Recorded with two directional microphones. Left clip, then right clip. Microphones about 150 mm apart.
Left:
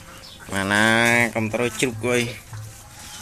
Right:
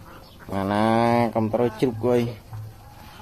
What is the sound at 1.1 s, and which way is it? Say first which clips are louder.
Speech: left 1 dB; 25° right (ahead or behind).